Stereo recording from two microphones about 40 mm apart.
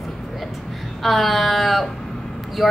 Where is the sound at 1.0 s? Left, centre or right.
Centre.